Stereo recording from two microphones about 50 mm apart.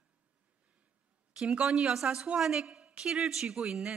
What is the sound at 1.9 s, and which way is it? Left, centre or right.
Speech, centre.